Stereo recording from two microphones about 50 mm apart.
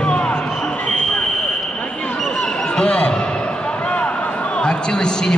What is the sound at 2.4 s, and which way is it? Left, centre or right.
Basketball bounce, centre.